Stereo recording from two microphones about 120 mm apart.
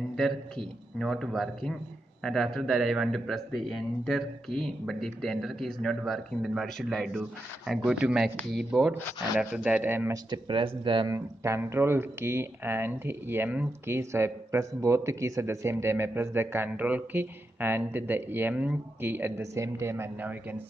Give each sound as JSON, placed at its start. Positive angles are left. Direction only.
{"t": 0.1, "sound": "speech", "side_deg": 5}
{"t": 10.1, "sound": "speech", "side_deg": -40}
{"t": 11.1, "sound": "speech", "side_deg": -25}